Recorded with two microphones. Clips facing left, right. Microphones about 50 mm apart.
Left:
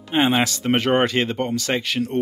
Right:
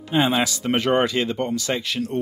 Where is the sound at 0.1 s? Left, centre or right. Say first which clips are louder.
Left 1 dB; left.